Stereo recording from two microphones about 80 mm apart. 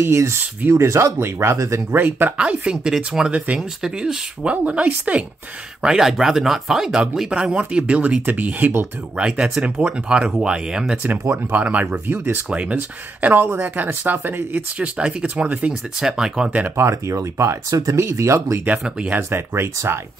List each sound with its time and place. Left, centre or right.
0.0 s speech: right
2.0 s speech: right
2.3 s speech: centre
11.5 s speech: centre
12.4 s speech: centre
16.0 s speech: centre
16.7 s speech: right
18.7 s speech: centre
19.3 s speech: right